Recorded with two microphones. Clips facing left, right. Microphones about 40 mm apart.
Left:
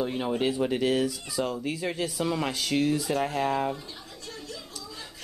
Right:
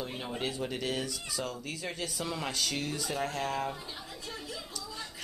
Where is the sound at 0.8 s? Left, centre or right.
Centre.